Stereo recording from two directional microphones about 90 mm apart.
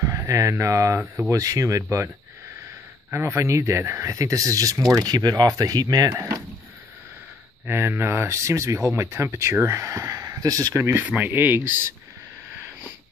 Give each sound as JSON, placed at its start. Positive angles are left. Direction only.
{"t": 0.0, "sound": "speech", "side_deg": -35}
{"t": 3.1, "sound": "speech", "side_deg": -25}
{"t": 7.6, "sound": "speech", "side_deg": -25}
{"t": 11.1, "sound": "speech", "side_deg": -20}